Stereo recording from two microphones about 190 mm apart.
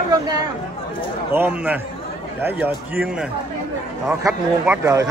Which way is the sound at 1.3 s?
10° right (ahead or behind).